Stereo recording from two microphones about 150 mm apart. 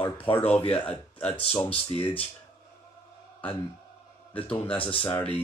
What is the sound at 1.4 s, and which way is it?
Speech, 40° left (ahead or behind).